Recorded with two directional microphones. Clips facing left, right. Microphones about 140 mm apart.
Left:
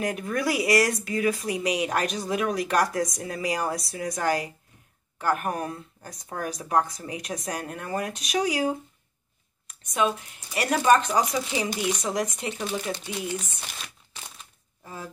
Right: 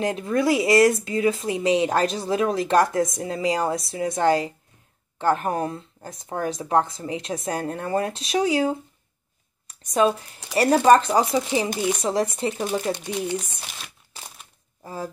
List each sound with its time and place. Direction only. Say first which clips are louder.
0.0 s speech: right 5 dB; 25° right (ahead or behind)
12.6 s speech: right 4 dB; 40° right (ahead or behind)
14.8 s speech: right 7 dB; 35° right (ahead or behind)